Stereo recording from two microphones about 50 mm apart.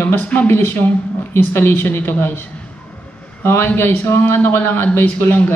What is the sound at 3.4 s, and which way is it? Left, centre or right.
Speech, left.